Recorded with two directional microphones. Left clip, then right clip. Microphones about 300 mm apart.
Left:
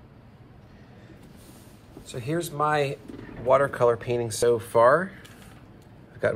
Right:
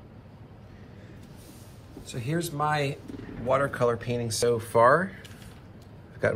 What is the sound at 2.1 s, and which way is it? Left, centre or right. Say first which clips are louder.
Speech: left 3 dB; centre.